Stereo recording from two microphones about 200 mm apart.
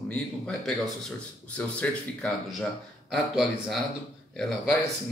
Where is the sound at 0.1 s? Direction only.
5° left (ahead or behind).